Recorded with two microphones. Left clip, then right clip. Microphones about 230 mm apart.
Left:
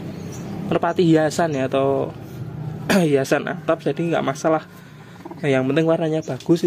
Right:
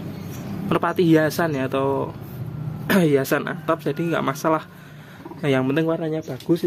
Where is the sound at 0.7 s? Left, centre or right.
Centre.